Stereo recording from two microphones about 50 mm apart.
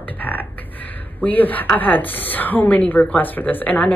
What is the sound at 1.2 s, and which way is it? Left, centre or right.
Speech, left.